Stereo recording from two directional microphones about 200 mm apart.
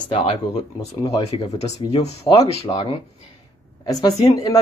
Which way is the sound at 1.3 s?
35° left (ahead or behind).